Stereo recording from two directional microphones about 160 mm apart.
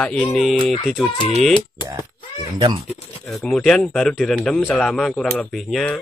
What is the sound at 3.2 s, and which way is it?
A man's voice, 5° left (ahead or behind).